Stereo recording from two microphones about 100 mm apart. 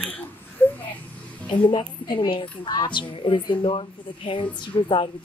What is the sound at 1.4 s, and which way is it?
A woman's voice, 55° left (ahead or behind).